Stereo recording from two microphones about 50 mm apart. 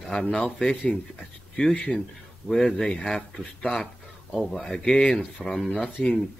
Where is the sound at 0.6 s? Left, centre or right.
Left.